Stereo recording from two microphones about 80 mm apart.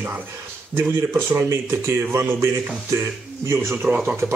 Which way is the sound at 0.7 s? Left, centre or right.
Right.